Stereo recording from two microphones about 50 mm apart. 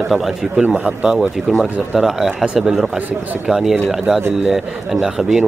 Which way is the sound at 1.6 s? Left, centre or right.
Centre.